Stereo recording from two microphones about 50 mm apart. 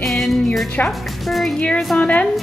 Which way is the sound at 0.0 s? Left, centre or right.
Centre.